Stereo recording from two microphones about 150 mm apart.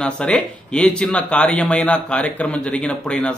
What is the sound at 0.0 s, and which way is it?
A man's voice, 5° left (ahead or behind).